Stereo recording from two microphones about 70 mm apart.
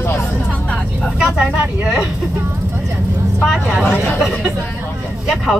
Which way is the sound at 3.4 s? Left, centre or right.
Centre.